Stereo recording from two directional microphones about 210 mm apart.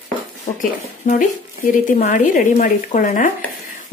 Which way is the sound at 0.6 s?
40° left (ahead or behind).